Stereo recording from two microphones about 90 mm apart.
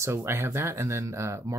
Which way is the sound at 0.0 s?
30° right (ahead or behind).